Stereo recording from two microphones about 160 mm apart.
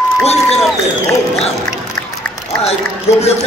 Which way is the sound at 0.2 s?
40° left (ahead or behind).